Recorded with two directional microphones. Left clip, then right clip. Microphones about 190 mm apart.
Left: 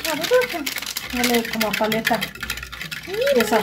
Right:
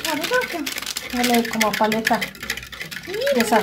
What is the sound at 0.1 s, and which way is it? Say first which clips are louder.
Speech: left 4 dB; 5° right (ahead or behind).